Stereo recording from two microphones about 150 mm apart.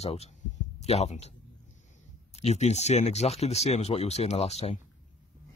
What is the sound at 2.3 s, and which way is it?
Speech, 45° left (ahead or behind).